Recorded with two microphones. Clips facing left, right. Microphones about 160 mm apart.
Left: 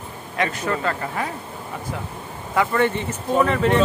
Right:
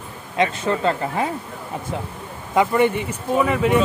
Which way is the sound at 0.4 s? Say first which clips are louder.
Right 3 dB; 25° right (ahead or behind).